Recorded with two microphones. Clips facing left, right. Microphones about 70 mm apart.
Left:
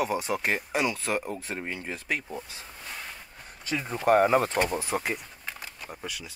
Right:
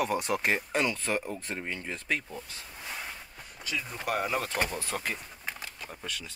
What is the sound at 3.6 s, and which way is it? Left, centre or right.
Speech, left.